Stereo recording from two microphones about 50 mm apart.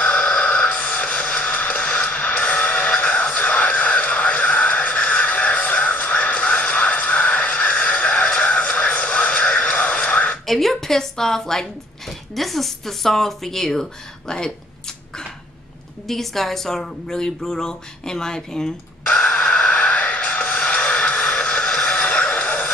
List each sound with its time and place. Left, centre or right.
0.0 s music: left
10.4 s a woman's voice: centre; by 19.5 s left
19.5 s music: left
21.9 s music: left